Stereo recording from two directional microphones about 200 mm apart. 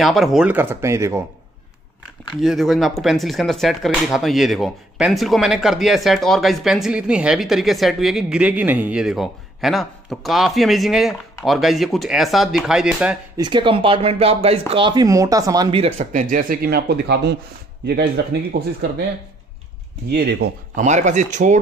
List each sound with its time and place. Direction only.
0.0 s speech: centre (ahead or behind)
2.4 s speech: centre (ahead or behind)
13.4 s speech: 25° right (ahead or behind); by 19.0 s 55° right (ahead or behind)
20.1 s speech: 55° right (ahead or behind)
20.7 s speech: 35° right (ahead or behind)